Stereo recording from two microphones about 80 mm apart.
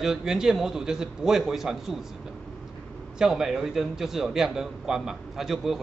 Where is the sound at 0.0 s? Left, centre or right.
Centre.